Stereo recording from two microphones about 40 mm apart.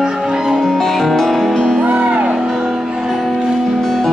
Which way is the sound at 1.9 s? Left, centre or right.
Right.